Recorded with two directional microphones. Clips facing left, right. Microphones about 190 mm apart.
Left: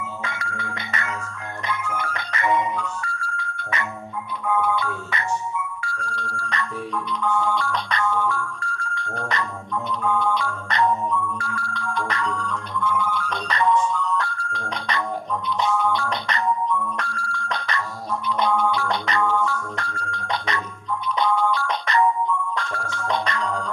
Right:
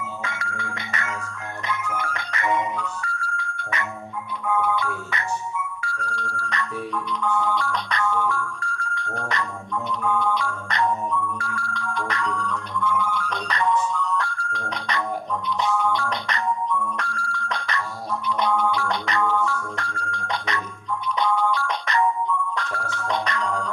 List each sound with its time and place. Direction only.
0.2 s music: 30° left (ahead or behind)
8.5 s a sound: 30° left (ahead or behind)
9.8 s music: 30° left (ahead or behind)